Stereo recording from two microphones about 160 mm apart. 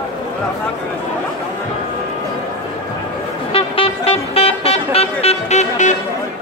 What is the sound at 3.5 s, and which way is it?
Vehicle, 35° left (ahead or behind).